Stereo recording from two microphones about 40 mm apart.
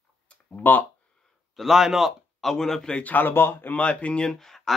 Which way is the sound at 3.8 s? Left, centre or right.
Left.